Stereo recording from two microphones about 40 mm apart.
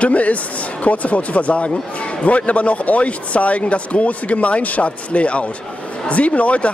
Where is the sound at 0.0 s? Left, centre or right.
Left.